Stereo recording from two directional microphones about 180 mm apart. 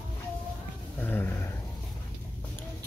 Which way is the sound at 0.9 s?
10° left (ahead or behind).